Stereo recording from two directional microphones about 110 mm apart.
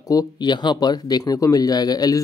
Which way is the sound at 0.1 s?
35° left (ahead or behind).